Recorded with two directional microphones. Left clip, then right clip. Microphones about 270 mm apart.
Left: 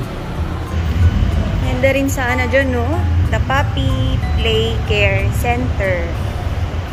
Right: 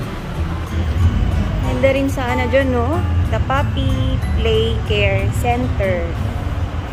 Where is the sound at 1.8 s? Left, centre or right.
Centre.